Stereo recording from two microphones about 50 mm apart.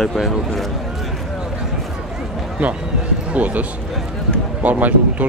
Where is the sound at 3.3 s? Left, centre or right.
Right.